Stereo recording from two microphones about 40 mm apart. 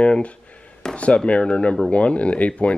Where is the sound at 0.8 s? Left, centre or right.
Left.